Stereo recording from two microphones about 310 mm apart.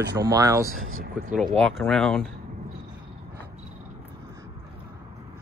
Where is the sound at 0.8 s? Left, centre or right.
Right.